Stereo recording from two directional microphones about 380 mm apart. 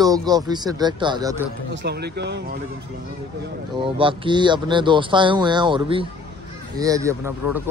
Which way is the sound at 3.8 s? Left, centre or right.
Centre.